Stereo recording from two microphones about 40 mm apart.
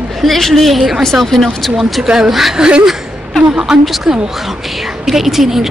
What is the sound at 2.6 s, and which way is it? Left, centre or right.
A woman's voice, right.